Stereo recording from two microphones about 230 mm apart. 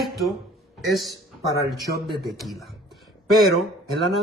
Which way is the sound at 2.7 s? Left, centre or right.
Centre.